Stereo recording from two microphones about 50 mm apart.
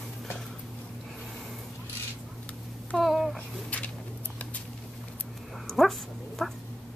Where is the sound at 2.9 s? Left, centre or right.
Centre.